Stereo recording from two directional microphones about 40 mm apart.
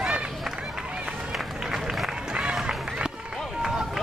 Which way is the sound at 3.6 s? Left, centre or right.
Centre.